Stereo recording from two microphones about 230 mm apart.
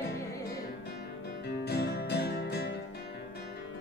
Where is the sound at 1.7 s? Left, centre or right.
Left.